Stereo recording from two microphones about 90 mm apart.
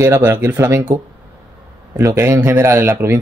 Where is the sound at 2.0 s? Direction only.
35° right (ahead or behind).